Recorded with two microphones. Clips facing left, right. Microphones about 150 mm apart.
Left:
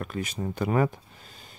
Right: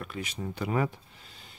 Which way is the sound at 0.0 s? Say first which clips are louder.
Left 4 dB; 45° left (ahead or behind).